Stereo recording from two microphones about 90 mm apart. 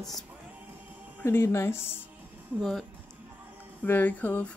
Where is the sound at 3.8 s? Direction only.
20° left (ahead or behind).